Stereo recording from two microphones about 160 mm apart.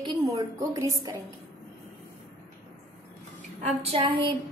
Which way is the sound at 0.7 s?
20° right (ahead or behind).